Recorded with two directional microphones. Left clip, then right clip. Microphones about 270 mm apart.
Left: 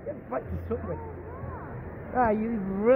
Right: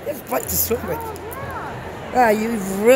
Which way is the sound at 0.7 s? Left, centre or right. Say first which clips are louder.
Right 10 dB; right.